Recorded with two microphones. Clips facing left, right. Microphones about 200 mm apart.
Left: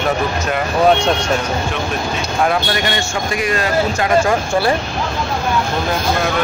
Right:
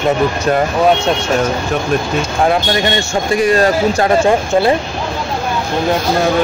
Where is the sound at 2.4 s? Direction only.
25° right (ahead or behind).